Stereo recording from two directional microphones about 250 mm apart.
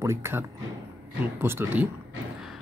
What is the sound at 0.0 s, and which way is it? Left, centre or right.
Speech, centre.